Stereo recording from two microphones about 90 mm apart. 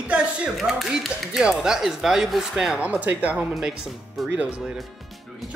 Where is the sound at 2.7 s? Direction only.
15° right (ahead or behind).